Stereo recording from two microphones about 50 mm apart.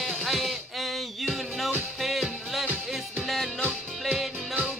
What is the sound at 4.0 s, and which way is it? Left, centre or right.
Music, centre.